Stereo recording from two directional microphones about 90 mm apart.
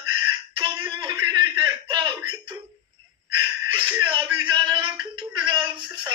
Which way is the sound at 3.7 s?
60° right (ahead or behind).